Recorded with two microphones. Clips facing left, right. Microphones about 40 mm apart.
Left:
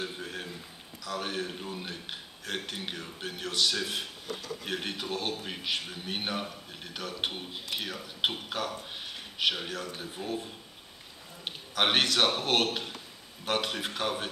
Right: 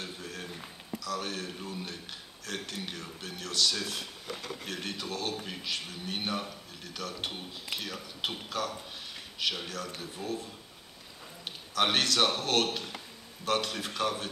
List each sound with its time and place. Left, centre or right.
0.0 s a sound: left
1.0 s a man's voice: left
4.4 s speech: right
4.6 s a man's voice: left